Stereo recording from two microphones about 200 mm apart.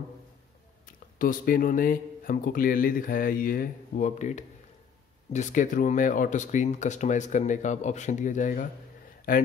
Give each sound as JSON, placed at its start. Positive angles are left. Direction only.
{"t": 1.1, "sound": "speech", "side_deg": 45}